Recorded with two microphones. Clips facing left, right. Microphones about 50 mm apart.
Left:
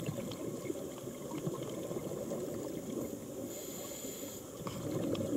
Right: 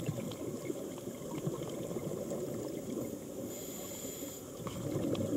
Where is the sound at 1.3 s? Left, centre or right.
Centre.